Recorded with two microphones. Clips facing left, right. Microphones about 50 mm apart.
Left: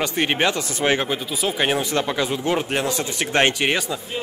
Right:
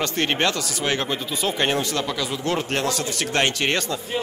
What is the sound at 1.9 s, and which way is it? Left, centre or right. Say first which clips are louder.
Speech: left 4 dB; left.